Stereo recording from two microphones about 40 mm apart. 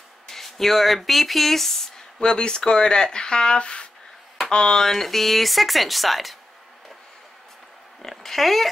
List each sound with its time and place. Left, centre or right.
0.3 s speech: centre
2.1 s speech: left
4.8 s speech: centre
8.0 s speech: centre